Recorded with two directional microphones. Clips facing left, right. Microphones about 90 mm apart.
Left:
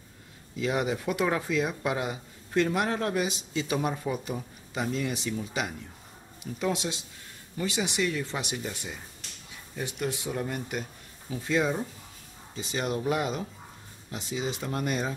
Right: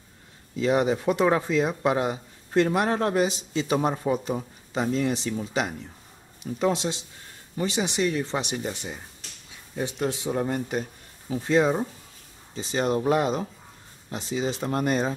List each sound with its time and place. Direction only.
0.6 s speech: 30° right (ahead or behind)
9.8 s speech: 30° right (ahead or behind)